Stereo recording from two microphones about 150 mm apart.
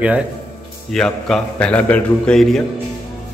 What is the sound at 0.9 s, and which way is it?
A man's voice, 5° left (ahead or behind).